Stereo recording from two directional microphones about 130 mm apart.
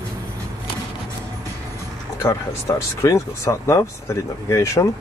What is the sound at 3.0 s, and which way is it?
Speech, 25° left (ahead or behind).